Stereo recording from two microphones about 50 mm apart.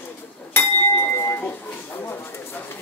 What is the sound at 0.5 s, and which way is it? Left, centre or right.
Chink, left.